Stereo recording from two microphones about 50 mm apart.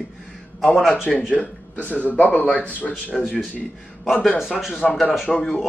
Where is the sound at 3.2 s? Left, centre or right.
Centre.